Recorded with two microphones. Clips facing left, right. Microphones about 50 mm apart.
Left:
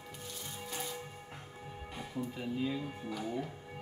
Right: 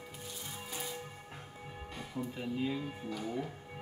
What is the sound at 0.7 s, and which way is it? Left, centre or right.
Music, centre.